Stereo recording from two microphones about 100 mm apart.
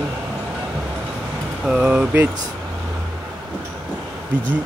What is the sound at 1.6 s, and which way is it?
Speech, 5° right (ahead or behind).